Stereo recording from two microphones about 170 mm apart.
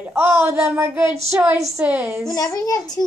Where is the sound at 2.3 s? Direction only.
20° left (ahead or behind).